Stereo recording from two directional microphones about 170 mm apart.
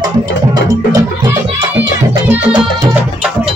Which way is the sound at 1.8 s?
10° right (ahead or behind).